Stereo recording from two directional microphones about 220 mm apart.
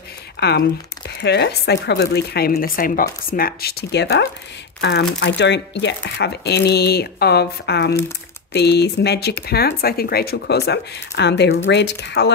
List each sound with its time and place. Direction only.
0.4 s speech: 45° left (ahead or behind)